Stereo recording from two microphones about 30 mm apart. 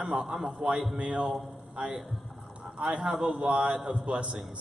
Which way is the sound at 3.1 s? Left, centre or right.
Centre.